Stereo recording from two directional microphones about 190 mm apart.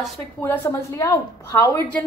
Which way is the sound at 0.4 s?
10° left (ahead or behind).